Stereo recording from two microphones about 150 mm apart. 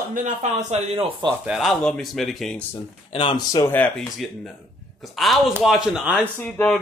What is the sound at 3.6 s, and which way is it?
Speech, 10° left (ahead or behind).